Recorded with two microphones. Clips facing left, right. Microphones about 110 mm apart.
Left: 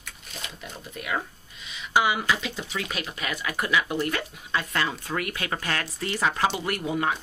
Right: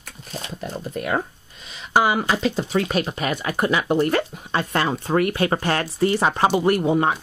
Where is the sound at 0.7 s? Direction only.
45° right (ahead or behind).